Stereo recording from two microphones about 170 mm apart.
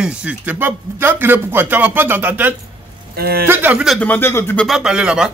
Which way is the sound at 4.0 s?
10° left (ahead or behind).